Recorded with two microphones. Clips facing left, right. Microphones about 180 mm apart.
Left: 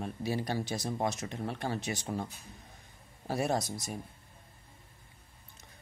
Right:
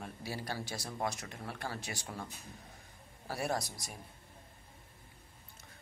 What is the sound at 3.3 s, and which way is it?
Speech, 20° left (ahead or behind).